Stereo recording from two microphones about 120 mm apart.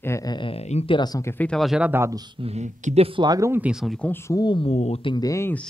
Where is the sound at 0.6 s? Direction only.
65° left (ahead or behind).